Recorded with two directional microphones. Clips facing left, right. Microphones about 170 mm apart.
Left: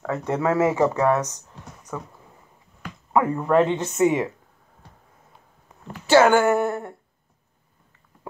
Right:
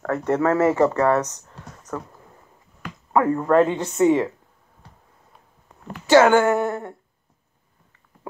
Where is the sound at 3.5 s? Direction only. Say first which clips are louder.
Right 2 dB; 20° left (ahead or behind).